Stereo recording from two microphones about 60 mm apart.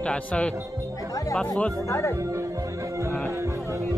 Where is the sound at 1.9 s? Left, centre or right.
Left.